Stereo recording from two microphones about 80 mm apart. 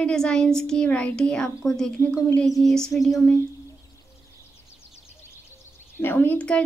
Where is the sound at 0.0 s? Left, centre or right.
Centre.